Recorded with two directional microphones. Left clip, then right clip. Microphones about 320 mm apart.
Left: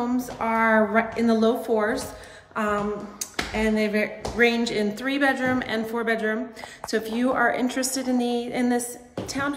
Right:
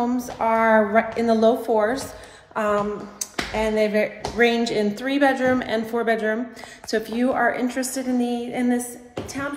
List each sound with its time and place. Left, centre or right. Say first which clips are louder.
0.0 s a woman's voice: right 4 dB; centre